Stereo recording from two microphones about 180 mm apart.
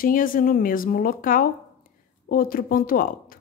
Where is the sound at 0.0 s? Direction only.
50° left (ahead or behind).